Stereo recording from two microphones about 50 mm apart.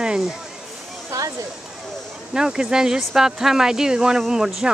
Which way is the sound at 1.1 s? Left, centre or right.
Right.